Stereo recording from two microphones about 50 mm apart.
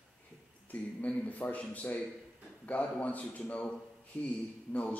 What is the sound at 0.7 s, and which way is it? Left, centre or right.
A man's voice, left.